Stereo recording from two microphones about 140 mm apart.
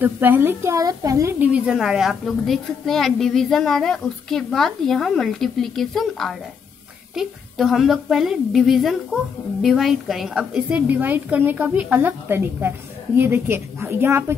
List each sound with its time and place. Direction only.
0.0 s a woman's voice: 15° right (ahead or behind)
1.4 s a woman's voice: 5° right (ahead or behind)